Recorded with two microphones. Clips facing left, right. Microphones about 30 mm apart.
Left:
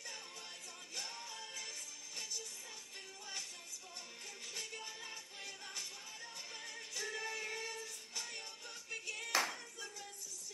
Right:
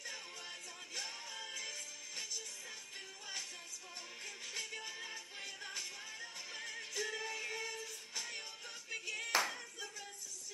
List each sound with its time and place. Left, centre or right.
0.9 s music: centre
5.0 s music: centre
9.3 s clapping: centre